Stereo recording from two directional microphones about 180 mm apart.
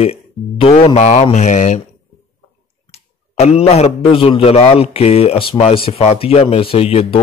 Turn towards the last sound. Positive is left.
turn(degrees=35)  # may be behind; listen again after turning